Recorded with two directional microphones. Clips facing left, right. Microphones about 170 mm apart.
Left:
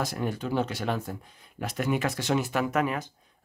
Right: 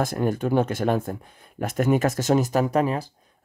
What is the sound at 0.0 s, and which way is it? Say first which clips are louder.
Speech: right 7 dB; 50° right (ahead or behind).